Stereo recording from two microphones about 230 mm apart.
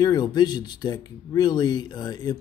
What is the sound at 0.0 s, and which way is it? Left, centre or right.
Speech, centre.